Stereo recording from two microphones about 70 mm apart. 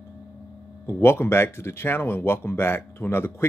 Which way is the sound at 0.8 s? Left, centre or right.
Left.